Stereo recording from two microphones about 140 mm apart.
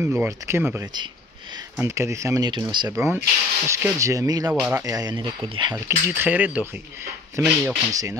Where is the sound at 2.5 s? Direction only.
35° right (ahead or behind).